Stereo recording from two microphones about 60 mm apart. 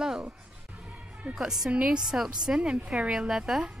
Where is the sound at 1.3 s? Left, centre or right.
Centre.